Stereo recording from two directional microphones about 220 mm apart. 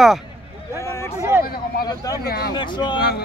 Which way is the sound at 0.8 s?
10° left (ahead or behind).